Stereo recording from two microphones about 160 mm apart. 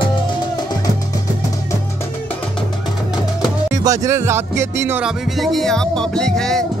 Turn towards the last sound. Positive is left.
turn(degrees=5)  # may be behind; listen again after turning